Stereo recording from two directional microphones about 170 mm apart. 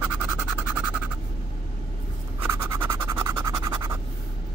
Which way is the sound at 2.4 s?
15° right (ahead or behind).